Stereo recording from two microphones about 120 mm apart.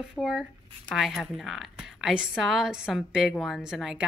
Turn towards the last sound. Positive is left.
turn(degrees=-5)  # may be behind; listen again after turning